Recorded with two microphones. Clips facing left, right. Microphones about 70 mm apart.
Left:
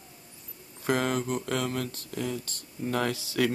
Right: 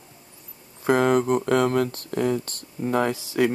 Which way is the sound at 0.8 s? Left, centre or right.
Right.